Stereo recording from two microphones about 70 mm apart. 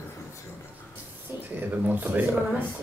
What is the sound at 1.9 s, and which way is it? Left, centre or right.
Speech, right.